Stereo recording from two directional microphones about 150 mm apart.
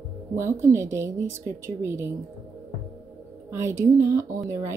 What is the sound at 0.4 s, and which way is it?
Speech, 20° right (ahead or behind).